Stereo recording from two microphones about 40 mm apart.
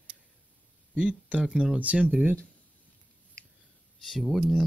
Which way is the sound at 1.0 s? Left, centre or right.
Right.